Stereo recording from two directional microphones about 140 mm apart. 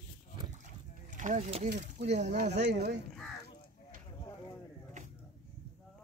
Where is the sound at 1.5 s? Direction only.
55° right (ahead or behind).